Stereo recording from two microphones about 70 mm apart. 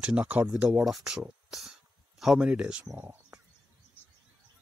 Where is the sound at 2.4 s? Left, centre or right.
Centre.